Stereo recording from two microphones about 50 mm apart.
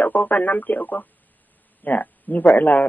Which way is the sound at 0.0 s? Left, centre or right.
Left.